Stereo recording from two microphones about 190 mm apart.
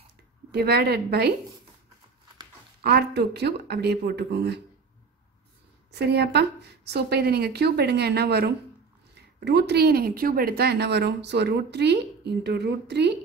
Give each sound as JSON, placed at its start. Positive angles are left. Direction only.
{"t": 0.5, "sound": "speech", "side_deg": -60}
{"t": 2.8, "sound": "speech", "side_deg": -55}
{"t": 5.9, "sound": "speech", "side_deg": -60}